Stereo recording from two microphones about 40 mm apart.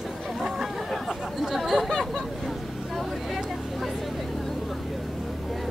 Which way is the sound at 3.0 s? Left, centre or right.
Centre.